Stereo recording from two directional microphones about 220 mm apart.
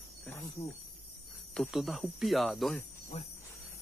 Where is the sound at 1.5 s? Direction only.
Centre (ahead or behind).